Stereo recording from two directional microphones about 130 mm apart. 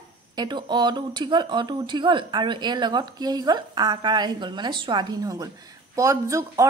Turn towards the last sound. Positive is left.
turn(degrees=-25)  # may be behind; listen again after turning